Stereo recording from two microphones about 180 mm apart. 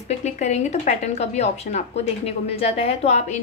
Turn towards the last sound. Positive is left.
turn(degrees=35)  # may be behind; listen again after turning